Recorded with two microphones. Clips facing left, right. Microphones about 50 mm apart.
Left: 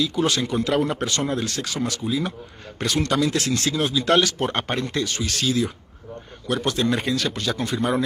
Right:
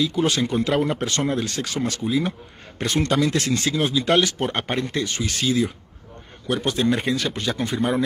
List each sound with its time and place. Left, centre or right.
0.0 s a man's voice: right
3.5 s a man's voice: right
4.4 s speech: centre
5.0 s a man's voice: centre